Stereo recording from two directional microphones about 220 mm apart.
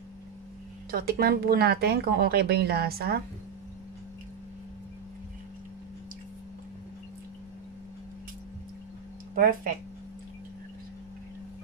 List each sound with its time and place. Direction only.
0.9 s speech: 45° right (ahead or behind)
9.3 s speech: 40° right (ahead or behind)